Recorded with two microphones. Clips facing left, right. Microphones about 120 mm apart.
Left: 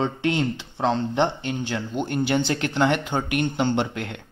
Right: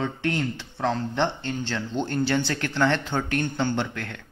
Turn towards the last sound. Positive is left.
turn(degrees=20)  # may be behind; listen again after turning